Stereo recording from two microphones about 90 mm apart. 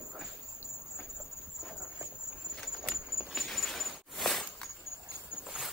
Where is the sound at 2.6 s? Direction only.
5° right (ahead or behind).